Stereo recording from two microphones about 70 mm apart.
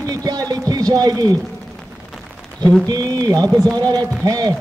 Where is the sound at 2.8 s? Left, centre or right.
Right.